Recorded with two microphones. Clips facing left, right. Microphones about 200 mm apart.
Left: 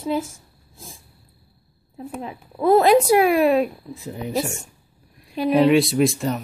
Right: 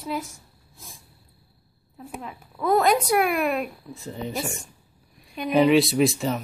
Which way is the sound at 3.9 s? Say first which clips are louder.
Left 1 dB; 5° left (ahead or behind).